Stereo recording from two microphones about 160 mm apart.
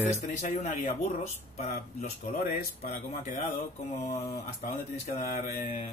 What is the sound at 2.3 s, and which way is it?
Speech, 65° left (ahead or behind).